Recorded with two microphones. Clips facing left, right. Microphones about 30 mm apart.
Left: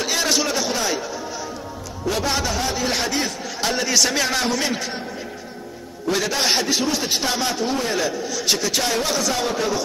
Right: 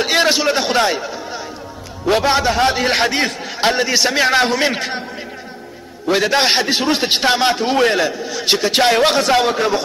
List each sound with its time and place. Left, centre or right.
0.0 s a sound: right
2.0 s a man's voice: right
2.6 s a man's voice: right
3.7 s a man's voice: right
6.0 s a man's voice: right
8.0 s a man's voice: right